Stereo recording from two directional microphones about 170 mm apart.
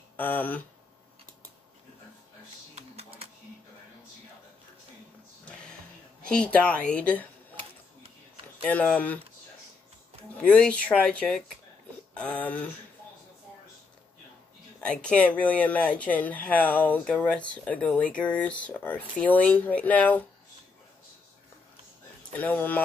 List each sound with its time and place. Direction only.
0.2 s speech: 10° left (ahead or behind)
2.7 s a sound: 35° right (ahead or behind)
5.4 s music: 5° left (ahead or behind)
6.2 s speech: 5° left (ahead or behind)
8.6 s speech: 10° left (ahead or behind)
10.4 s speech: 5° left (ahead or behind)
14.8 s speech: 5° left (ahead or behind)
22.3 s speech: 10° left (ahead or behind)